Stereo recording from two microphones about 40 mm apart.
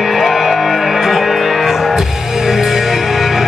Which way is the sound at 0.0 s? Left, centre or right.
Centre.